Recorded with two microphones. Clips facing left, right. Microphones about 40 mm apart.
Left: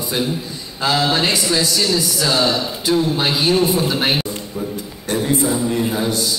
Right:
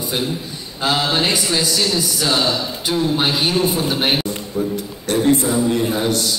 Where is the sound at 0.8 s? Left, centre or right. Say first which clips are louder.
Left 1 dB; centre.